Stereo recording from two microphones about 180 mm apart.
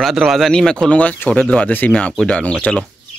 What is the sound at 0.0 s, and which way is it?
Speech, centre (ahead or behind).